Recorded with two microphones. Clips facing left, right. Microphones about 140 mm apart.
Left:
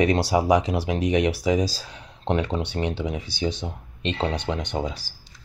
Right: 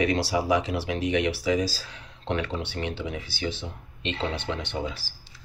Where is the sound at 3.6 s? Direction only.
40° left (ahead or behind).